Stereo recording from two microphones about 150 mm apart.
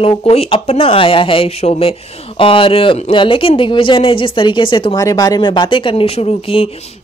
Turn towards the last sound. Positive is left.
turn(degrees=40)  # may be behind; listen again after turning